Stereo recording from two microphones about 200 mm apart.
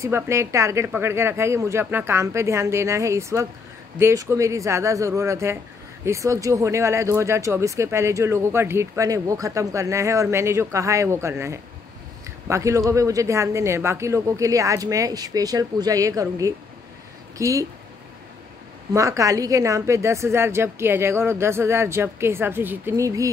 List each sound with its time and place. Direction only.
0.0 s speech: 15° right (ahead or behind)
18.9 s speech: 15° right (ahead or behind)